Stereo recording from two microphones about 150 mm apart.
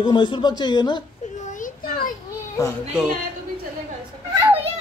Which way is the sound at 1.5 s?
70° left (ahead or behind).